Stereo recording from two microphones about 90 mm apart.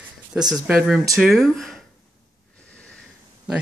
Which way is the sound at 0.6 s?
10° right (ahead or behind).